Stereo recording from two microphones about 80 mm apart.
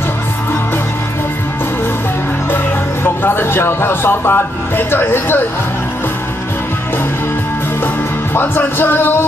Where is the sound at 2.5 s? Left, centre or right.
Left.